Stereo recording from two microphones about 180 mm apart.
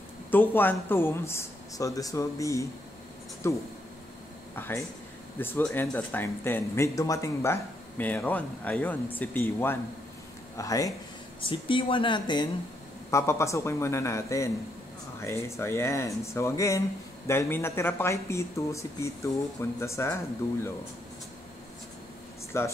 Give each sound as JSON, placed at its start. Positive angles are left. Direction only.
{"t": 0.3, "sound": "speech", "side_deg": 10}
{"t": 22.5, "sound": "speech", "side_deg": 15}